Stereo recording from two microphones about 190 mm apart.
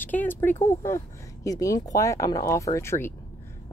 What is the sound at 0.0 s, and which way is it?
Speech, 10° left (ahead or behind).